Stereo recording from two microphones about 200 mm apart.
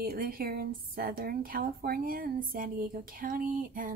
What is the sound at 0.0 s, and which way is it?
A woman's voice, 45° right (ahead or behind).